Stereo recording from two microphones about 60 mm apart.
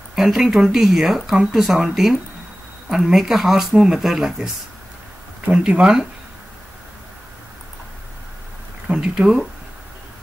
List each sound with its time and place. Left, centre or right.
0.1 s speech: centre
5.5 s speech: centre
8.8 s speech: centre